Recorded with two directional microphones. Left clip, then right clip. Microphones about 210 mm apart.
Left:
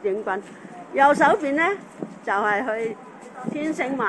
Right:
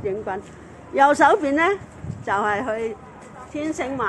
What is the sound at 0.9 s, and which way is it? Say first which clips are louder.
Speech: right 1 dB; 30° right (ahead or behind).